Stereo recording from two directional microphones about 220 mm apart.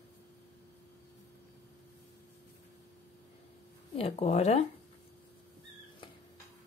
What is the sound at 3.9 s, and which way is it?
Speech, 25° left (ahead or behind).